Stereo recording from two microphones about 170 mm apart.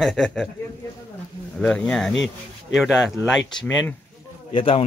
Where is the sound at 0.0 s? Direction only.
Centre (ahead or behind).